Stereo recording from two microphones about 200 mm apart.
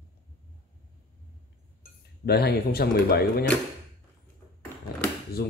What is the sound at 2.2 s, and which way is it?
Speech, 50° left (ahead or behind).